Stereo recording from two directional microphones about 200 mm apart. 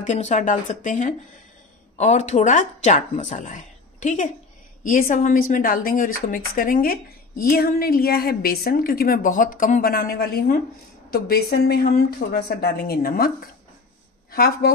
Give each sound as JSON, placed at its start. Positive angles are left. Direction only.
{"t": 0.0, "sound": "a woman's voice", "side_deg": 35}
{"t": 14.3, "sound": "a woman's voice", "side_deg": 50}